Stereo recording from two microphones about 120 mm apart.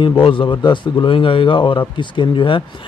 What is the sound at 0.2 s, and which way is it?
A man's voice, 45° left (ahead or behind).